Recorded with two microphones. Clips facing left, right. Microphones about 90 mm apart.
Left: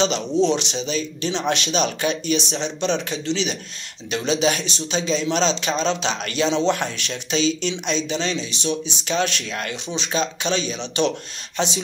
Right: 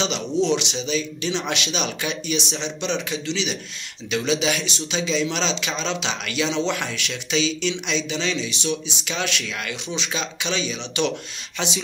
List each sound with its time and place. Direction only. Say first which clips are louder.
0.0 s speech: left 3 dB; 35° left (ahead or behind)